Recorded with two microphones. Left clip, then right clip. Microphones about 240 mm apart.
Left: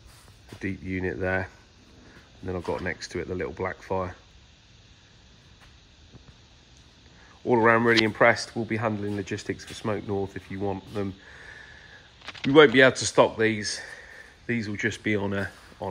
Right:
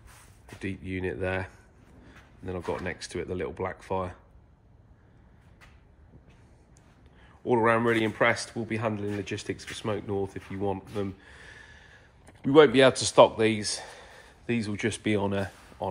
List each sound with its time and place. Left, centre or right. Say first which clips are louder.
0.6 s speech: left 3 dB; centre
7.4 s speech: left 3 dB; centre
13.8 s speech: left 4 dB; centre